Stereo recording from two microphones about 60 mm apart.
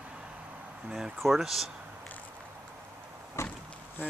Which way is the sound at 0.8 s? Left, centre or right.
Centre.